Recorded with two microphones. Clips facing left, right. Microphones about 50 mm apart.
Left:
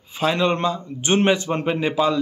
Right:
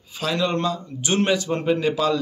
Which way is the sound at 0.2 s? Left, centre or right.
Left.